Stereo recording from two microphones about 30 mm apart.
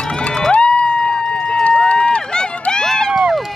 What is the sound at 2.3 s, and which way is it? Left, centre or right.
Run, left.